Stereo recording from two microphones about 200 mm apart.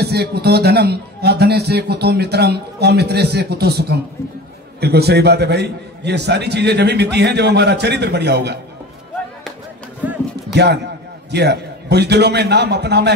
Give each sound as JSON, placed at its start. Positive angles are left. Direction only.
{"t": 0.0, "sound": "a man's voice", "side_deg": -55}
{"t": 10.5, "sound": "a man's voice", "side_deg": -55}